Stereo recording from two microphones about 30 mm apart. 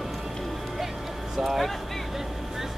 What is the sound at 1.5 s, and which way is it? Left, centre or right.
Speech, centre.